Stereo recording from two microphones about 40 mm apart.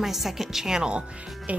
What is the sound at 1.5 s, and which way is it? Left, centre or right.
Speech, right.